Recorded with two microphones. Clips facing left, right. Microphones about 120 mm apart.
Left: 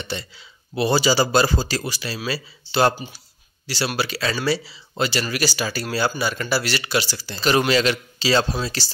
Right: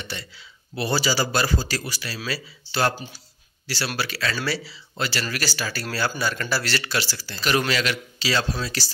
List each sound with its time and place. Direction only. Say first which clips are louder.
0.0 s a man's voice: left 5 dB; 20° left (ahead or behind)